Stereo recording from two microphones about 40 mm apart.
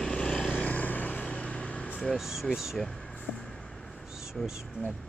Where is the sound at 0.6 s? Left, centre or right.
Left.